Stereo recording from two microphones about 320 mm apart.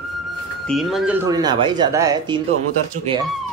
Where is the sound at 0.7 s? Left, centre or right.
Centre.